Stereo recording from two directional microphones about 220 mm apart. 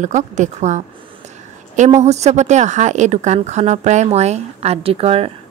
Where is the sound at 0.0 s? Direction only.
35° right (ahead or behind).